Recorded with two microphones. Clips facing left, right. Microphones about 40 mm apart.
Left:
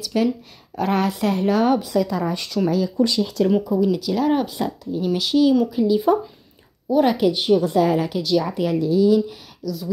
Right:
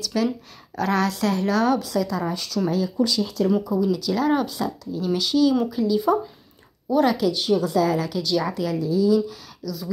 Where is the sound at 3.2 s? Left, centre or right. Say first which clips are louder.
Left 2 dB; left.